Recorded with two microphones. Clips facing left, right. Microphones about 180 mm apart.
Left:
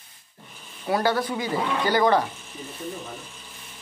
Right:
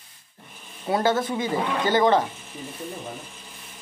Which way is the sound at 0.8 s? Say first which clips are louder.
Right 1 dB; 20° right (ahead or behind).